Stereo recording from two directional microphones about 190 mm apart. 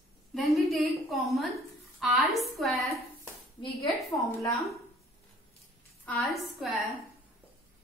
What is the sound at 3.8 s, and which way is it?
Speech, 15° left (ahead or behind).